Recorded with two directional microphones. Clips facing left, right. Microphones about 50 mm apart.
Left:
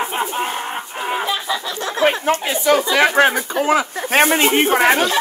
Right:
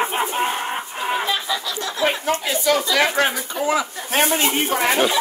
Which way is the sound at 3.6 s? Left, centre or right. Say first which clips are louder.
Left 3 dB; left.